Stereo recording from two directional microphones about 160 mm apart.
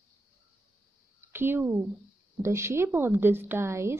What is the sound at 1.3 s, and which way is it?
Speech, 15° right (ahead or behind).